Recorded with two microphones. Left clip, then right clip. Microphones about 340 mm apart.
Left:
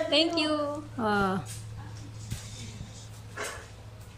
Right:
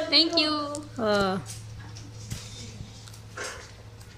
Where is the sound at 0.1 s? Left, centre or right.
Centre.